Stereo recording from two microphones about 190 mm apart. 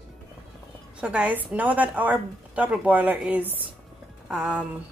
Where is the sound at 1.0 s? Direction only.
5° right (ahead or behind).